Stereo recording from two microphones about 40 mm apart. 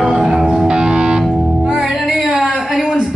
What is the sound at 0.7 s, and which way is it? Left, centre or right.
Music, right.